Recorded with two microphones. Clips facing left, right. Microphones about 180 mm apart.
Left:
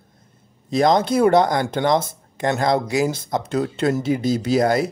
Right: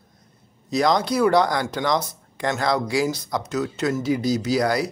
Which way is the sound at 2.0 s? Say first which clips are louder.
Left 3 dB; 20° left (ahead or behind).